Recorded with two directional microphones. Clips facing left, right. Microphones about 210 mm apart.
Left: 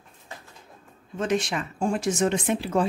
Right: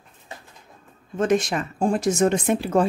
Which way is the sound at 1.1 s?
50° right (ahead or behind).